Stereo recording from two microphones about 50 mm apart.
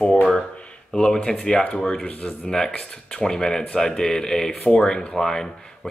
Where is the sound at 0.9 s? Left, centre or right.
Centre; by 2.4 s left.